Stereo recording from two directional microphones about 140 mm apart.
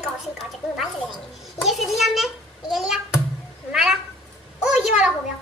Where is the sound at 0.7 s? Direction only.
Centre (ahead or behind).